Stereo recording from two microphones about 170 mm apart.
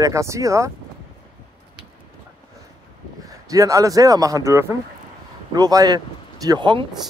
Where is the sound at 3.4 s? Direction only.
20° right (ahead or behind).